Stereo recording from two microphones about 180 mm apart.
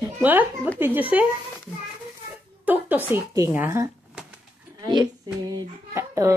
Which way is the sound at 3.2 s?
15° right (ahead or behind).